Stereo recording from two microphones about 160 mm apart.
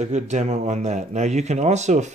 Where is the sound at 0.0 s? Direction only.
45° right (ahead or behind).